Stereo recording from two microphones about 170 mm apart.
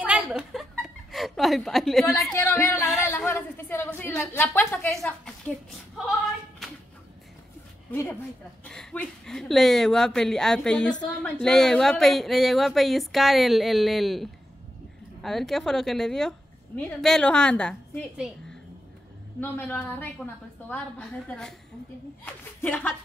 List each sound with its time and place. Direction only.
0.0 s chuckle: 5° right (ahead or behind)
2.1 s a woman's voice: 15° left (ahead or behind)
3.1 s a sound: 15° left (ahead or behind)
6.6 s a sound: centre (ahead or behind)
7.9 s a woman's voice: 15° left (ahead or behind)
8.6 s a woman's voice: 5° left (ahead or behind)
19.4 s a woman's voice: 10° left (ahead or behind)